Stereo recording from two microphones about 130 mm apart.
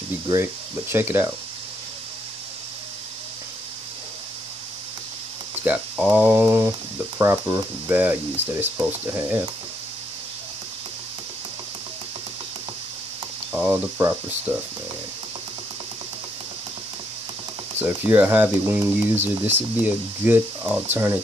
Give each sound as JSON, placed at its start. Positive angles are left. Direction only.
{"t": 0.3, "sound": "speech", "side_deg": -20}
{"t": 5.6, "sound": "speech", "side_deg": -10}
{"t": 13.5, "sound": "speech", "side_deg": -10}
{"t": 17.7, "sound": "speech", "side_deg": -15}